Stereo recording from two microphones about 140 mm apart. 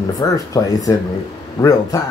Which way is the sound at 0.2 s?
25° left (ahead or behind).